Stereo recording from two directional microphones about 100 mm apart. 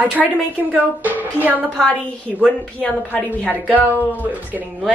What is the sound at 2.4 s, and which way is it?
A man's voice, 15° left (ahead or behind).